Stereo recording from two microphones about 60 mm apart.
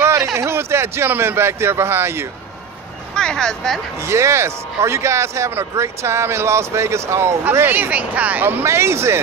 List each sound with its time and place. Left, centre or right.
0.0 s a man's voice: right
3.2 s speech: centre
4.0 s speech: right
7.6 s speech: right
8.6 s speech: right